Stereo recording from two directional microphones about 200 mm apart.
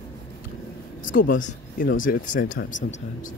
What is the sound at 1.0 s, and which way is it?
Speech, 45° left (ahead or behind).